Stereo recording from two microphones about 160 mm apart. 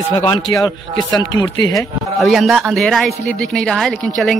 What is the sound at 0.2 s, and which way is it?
A man's voice, 25° left (ahead or behind).